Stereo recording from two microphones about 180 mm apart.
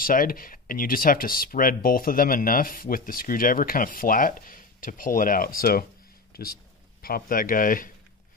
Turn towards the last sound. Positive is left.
turn(degrees=50)  # may be behind; listen again after turning